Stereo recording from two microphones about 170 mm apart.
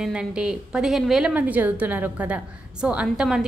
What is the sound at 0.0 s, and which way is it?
A woman's voice, 5° right (ahead or behind).